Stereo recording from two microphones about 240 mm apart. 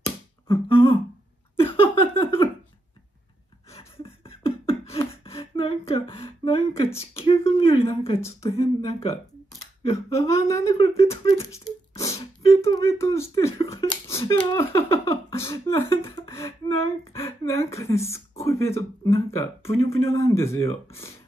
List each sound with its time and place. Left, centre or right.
0.5 s a sound: left
3.7 s beatboxing: left
7.0 s speech: left
11.3 s speech: centre